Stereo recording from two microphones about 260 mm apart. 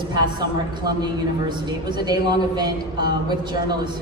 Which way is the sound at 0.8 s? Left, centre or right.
Centre.